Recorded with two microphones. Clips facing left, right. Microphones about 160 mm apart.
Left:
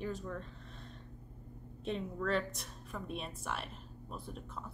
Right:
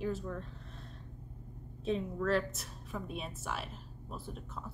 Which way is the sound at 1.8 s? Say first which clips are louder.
Right 3 dB; centre (ahead or behind).